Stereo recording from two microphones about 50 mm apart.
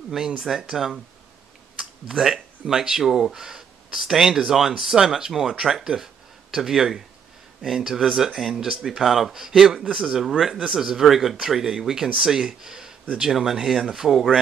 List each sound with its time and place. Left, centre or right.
0.4 s speech: centre